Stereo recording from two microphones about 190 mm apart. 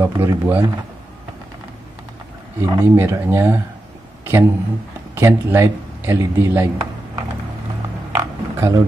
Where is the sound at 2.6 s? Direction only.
15° right (ahead or behind).